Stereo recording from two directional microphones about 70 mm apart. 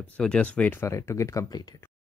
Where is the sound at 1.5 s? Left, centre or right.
Left.